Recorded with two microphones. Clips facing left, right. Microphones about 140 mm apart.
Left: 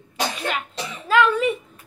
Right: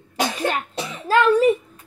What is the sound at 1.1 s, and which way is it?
Speech, 40° right (ahead or behind).